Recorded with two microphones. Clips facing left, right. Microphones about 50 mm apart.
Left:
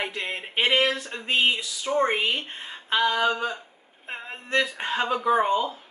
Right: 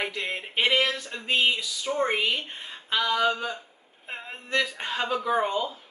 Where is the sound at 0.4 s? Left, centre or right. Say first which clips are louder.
Left 2 dB; left.